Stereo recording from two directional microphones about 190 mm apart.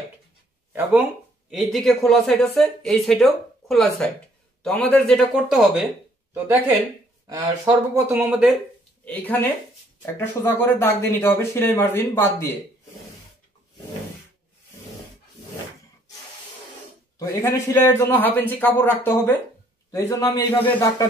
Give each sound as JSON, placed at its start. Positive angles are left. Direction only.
{"t": 1.5, "sound": "speech", "side_deg": 0}
{"t": 9.0, "sound": "speech", "side_deg": 10}
{"t": 17.2, "sound": "speech", "side_deg": 15}